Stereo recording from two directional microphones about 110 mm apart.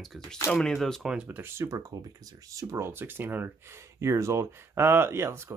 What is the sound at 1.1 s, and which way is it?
Speech, 10° right (ahead or behind).